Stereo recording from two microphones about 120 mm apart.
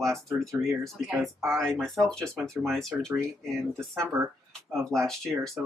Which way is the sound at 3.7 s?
20° right (ahead or behind).